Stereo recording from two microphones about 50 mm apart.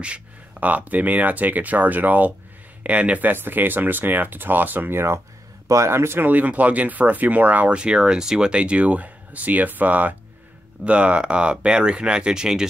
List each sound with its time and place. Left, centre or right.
0.0 s speech: right
3.3 s speech: right
4.9 s speech: right
5.7 s speech: right
6.2 s speech: right
7.8 s speech: centre